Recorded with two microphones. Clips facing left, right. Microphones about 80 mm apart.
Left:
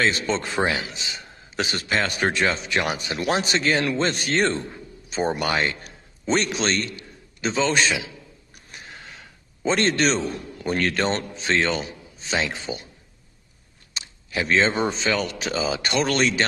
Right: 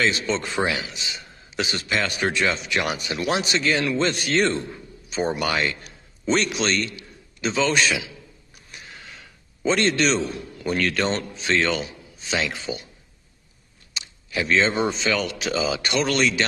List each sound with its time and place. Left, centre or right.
0.0 s a man's voice: left
9.7 s a man's voice: left
13.9 s a man's voice: left